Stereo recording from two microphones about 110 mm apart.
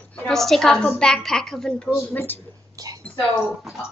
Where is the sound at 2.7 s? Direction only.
30° right (ahead or behind).